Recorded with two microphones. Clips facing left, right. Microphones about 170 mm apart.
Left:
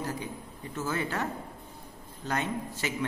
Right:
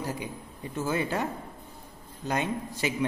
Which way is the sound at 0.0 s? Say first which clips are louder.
Right 1 dB; 10° right (ahead or behind).